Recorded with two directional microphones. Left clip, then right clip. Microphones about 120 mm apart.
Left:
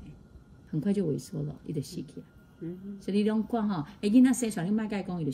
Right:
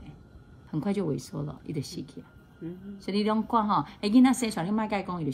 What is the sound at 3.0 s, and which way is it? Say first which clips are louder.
A woman's voice: right 1 dB; 65° right (ahead or behind).